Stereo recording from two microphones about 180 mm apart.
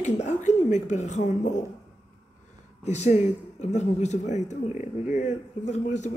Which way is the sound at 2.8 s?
40° left (ahead or behind).